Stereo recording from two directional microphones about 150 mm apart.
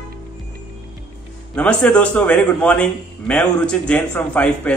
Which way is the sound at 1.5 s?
10° left (ahead or behind).